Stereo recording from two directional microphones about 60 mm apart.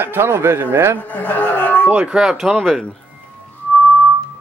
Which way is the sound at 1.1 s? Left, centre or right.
Left.